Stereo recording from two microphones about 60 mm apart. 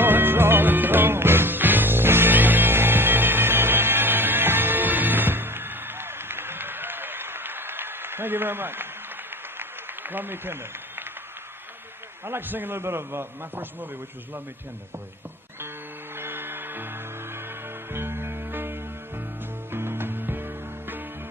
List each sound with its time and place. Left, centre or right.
0.0 s music: right
9.6 s a sound: right
12.3 s a man's voice: right
16.2 s music: right
17.9 s music: right